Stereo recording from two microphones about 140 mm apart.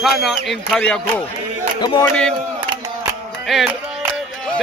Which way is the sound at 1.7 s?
30° left (ahead or behind).